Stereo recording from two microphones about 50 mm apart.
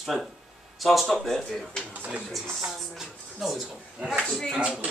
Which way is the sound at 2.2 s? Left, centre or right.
Centre.